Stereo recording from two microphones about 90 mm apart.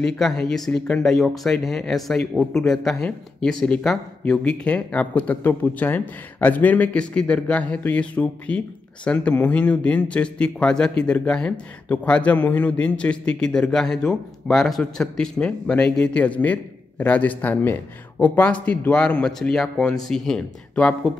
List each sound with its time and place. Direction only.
0.0 s a man's voice: 5° left (ahead or behind)